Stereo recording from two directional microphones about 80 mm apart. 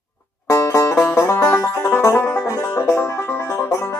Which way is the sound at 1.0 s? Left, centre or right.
Left.